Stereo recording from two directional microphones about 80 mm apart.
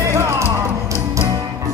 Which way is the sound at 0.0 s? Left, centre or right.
Right.